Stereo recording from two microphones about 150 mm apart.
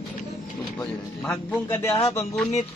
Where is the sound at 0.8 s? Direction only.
10° left (ahead or behind).